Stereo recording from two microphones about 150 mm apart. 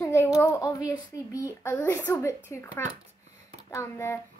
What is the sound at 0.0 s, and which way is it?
A child's voice, 20° left (ahead or behind).